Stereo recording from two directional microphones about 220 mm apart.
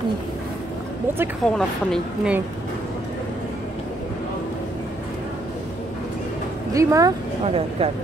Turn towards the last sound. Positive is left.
turn(degrees=-25)  # may be behind; listen again after turning